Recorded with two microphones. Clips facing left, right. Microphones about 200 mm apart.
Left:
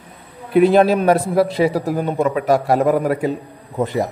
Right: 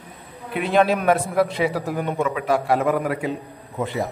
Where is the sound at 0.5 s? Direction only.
40° left (ahead or behind).